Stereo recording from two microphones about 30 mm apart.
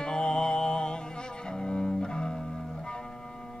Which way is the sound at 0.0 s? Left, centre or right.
Left.